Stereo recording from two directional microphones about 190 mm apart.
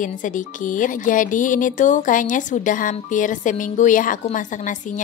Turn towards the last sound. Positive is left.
turn(degrees=40)  # may be behind; listen again after turning